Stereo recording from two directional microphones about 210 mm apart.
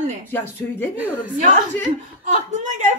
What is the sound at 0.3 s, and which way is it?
Speech, 10° left (ahead or behind).